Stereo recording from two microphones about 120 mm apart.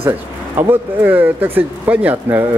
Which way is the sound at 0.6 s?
15° right (ahead or behind).